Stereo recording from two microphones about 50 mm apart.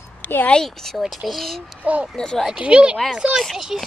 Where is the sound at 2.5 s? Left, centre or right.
Right.